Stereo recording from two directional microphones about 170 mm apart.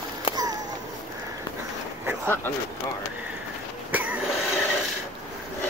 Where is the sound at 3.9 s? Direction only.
10° right (ahead or behind).